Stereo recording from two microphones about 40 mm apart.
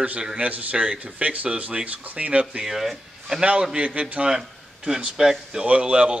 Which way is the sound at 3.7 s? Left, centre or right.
Right.